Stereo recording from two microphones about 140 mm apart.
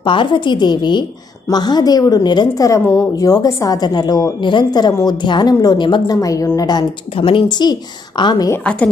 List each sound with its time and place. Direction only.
0.0 s a woman's voice: 35° left (ahead or behind)
6.1 s a woman's voice: 20° left (ahead or behind)